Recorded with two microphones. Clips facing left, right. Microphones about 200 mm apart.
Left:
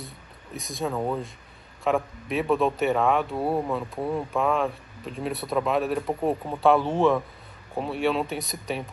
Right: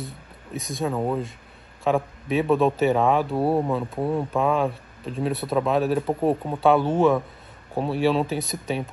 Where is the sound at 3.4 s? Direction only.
25° right (ahead or behind).